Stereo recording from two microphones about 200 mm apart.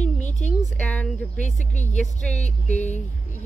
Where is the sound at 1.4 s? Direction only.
35° left (ahead or behind).